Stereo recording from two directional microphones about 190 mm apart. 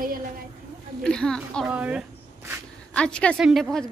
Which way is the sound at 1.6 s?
5° right (ahead or behind).